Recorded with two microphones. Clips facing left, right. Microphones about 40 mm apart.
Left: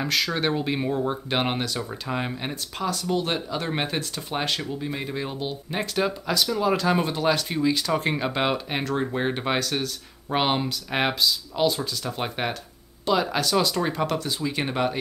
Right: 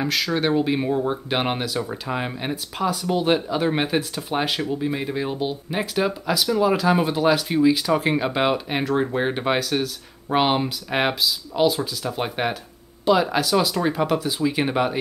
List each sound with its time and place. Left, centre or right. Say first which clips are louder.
0.0 s speech: right 2 dB; centre